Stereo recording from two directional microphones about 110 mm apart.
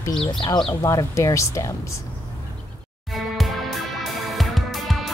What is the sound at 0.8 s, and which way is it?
Speech, 25° left (ahead or behind).